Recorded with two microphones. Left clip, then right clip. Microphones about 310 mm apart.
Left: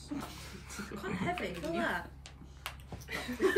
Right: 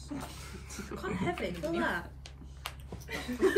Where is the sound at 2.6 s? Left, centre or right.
Right.